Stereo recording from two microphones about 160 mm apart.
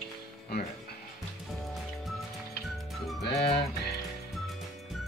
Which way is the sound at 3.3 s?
90° left.